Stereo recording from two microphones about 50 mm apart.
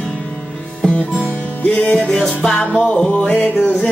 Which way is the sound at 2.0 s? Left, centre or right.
Centre.